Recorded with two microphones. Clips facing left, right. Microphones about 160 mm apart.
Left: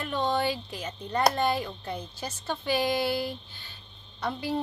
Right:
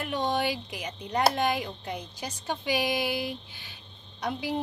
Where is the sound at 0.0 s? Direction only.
15° right (ahead or behind).